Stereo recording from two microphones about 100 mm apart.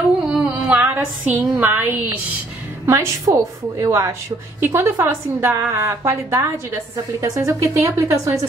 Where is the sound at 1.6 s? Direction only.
20° right (ahead or behind).